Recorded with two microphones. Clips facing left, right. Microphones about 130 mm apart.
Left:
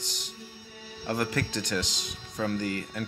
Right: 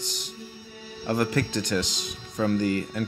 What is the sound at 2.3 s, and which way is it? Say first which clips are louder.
Speech: right 6 dB; 30° right (ahead or behind).